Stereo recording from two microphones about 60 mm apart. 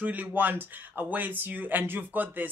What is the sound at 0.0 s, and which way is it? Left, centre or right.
Speech, right.